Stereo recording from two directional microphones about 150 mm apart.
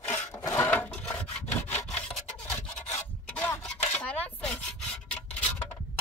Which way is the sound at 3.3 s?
10° left (ahead or behind).